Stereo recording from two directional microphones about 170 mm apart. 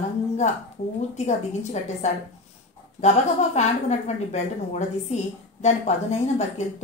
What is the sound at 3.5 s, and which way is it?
A woman's voice, 40° left (ahead or behind).